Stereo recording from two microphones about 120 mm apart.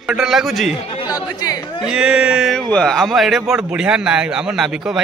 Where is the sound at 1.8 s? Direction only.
5° right (ahead or behind).